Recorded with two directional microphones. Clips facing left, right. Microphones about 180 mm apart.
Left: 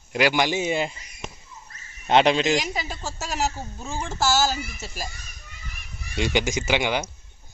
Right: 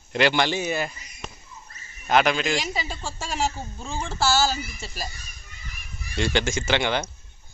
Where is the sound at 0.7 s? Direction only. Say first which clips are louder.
Left 2 dB; 25° left (ahead or behind).